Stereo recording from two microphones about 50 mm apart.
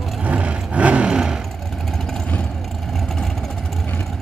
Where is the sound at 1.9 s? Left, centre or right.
Centre.